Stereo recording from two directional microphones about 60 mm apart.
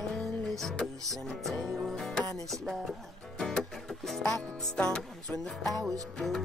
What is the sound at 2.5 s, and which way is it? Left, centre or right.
Speech, centre.